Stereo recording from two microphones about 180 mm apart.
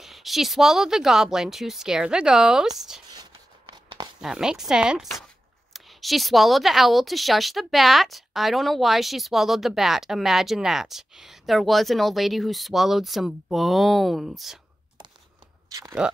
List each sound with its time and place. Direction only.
0.0 s speech: centre (ahead or behind)
3.7 s a sound: 25° right (ahead or behind)
4.2 s speech: 5° right (ahead or behind)
15.7 s speech: 15° right (ahead or behind)